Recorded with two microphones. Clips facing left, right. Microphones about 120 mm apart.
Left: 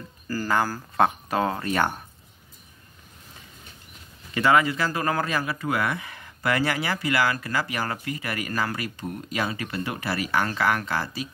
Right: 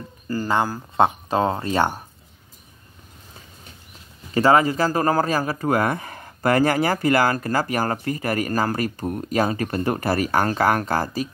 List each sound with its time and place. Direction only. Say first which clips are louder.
0.3 s speech: right 3 dB; 25° right (ahead or behind)
4.3 s speech: right 4 dB; 35° right (ahead or behind)